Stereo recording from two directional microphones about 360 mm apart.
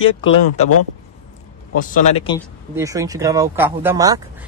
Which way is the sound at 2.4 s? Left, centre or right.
Centre.